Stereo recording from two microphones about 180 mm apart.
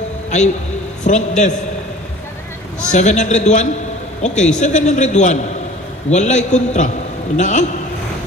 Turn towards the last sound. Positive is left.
turn(degrees=40)  # may be behind; listen again after turning